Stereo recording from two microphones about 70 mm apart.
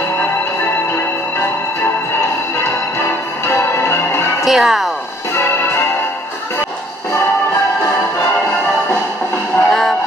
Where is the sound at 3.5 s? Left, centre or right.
Left.